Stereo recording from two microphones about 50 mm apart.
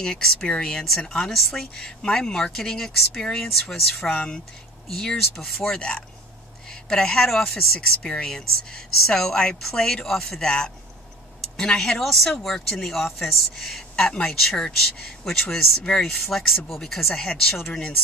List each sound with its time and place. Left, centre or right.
0.0 s a man's voice: centre
1.8 s speech: centre
5.1 s speech: centre
5.8 s a man's voice: centre
10.4 s a man's voice: centre
15.8 s a man's voice: centre